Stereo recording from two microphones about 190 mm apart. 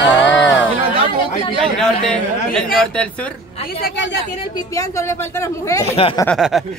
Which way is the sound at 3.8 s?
70° left (ahead or behind).